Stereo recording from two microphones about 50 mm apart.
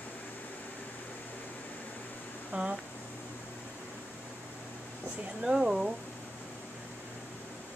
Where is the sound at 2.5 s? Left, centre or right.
Right.